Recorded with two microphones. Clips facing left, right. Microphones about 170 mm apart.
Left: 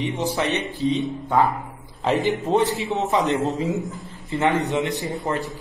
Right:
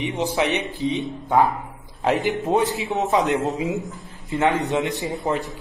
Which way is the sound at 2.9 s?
20° right (ahead or behind).